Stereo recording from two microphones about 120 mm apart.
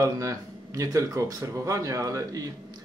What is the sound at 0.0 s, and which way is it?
Speech, 25° right (ahead or behind).